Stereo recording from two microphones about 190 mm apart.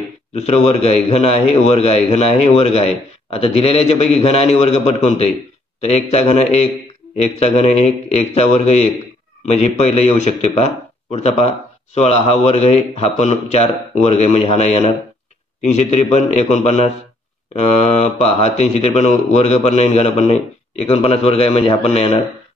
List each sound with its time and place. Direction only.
0.3 s a man's voice: 35° left (ahead or behind)